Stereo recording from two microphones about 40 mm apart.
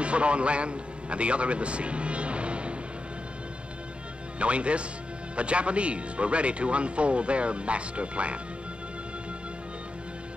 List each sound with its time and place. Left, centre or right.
0.0 s a man's voice: right
4.4 s a man's voice: right